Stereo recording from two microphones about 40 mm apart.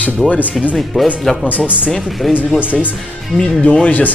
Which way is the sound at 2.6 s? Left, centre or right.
Right.